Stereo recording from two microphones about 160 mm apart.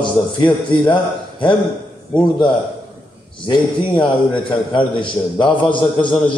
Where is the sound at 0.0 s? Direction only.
30° left (ahead or behind).